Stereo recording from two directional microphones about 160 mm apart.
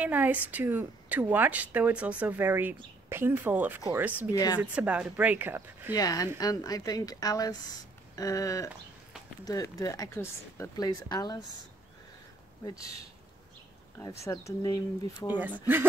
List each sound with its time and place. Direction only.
0.0 s a woman's voice: 10° right (ahead or behind)
4.3 s speech: 25° left (ahead or behind)
4.6 s a woman's voice: 10° right (ahead or behind)
5.9 s speech: 25° left (ahead or behind)
14.0 s speech: 20° left (ahead or behind)